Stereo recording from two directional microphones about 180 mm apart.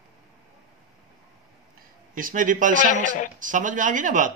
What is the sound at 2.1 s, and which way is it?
Speech, 50° right (ahead or behind).